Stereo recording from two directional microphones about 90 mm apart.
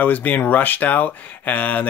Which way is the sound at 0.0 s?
20° left (ahead or behind).